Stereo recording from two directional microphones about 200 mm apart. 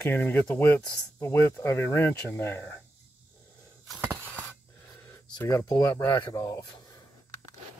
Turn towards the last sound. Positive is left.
turn(degrees=20)  # may be behind; listen again after turning